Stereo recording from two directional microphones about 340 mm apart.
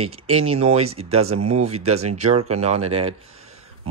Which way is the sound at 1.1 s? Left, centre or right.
Right.